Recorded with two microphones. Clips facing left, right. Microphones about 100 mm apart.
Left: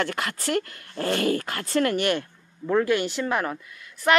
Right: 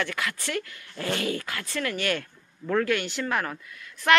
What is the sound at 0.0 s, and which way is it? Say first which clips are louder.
Speech: left 3 dB; 40° left (ahead or behind).